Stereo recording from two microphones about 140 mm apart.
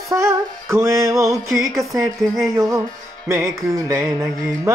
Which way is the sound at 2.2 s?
Centre (ahead or behind).